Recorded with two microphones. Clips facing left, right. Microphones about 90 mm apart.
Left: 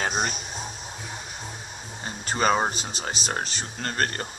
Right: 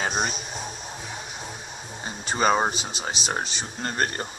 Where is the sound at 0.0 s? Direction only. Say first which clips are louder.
Even; 5° right (ahead or behind).